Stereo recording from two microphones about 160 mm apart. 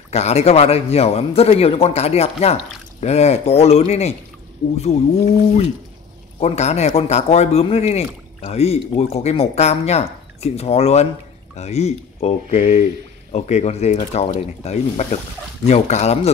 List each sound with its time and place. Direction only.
0.1 s speech: 40° left (ahead or behind)